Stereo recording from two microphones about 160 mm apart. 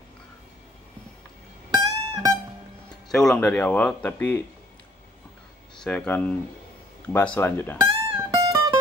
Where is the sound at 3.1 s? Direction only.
5° left (ahead or behind).